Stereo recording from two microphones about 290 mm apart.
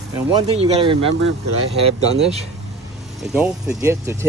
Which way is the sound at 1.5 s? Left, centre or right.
Right.